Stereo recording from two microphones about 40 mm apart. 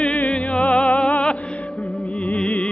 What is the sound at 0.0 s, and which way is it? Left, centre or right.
Music, left.